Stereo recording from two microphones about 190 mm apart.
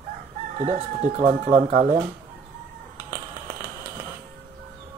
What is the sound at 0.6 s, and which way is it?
Speech, 35° right (ahead or behind).